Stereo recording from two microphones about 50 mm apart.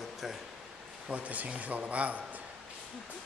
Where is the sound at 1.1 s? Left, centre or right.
Right.